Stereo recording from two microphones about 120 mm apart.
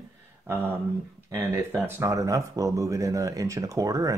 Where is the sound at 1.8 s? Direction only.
25° right (ahead or behind).